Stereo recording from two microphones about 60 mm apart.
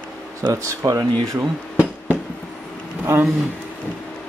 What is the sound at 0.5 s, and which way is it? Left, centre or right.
Speech, right.